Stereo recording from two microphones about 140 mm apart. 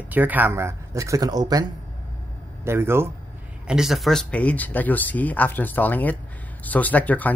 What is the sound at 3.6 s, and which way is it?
Speech, 5° right (ahead or behind).